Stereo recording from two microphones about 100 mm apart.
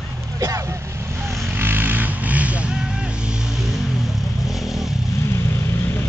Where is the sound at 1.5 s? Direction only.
20° right (ahead or behind).